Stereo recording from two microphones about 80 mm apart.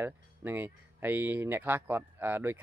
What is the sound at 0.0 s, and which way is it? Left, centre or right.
Speech, right.